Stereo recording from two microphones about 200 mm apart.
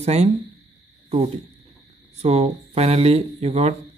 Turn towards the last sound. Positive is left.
turn(degrees=-30)  # may be behind; listen again after turning